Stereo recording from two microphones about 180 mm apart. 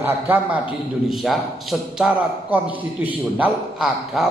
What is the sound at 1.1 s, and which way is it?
A man's voice, centre (ahead or behind).